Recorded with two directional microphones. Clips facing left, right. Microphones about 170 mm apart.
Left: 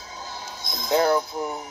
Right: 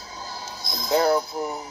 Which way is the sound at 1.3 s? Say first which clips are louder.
Even; 5° right (ahead or behind).